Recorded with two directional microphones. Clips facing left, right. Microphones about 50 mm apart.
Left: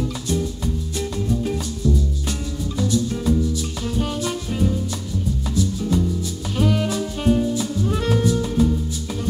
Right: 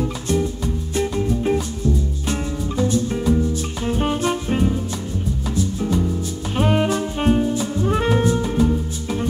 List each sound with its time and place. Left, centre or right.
0.0 s music: right
6.5 s saxophone: right